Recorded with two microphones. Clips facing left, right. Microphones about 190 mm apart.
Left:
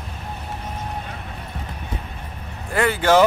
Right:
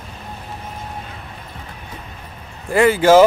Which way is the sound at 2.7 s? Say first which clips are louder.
Right 6 dB; 5° right (ahead or behind).